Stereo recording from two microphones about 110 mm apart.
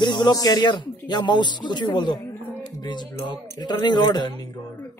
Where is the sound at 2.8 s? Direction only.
40° left (ahead or behind).